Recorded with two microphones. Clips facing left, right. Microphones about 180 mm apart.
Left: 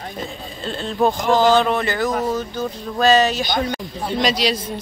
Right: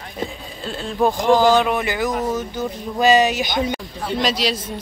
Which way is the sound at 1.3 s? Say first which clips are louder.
Right 1 dB; 15° right (ahead or behind).